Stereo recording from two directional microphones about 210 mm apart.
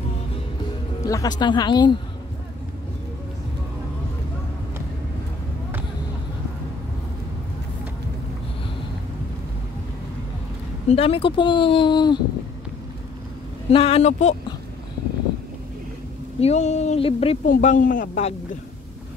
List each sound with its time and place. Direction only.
1.0 s speech: 15° left (ahead or behind)
10.9 s speech: 25° left (ahead or behind)
13.7 s speech: 30° left (ahead or behind)
16.3 s speech: 30° left (ahead or behind)